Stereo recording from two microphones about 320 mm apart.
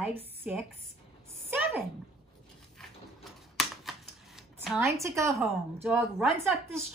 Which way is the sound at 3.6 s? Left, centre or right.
Centre.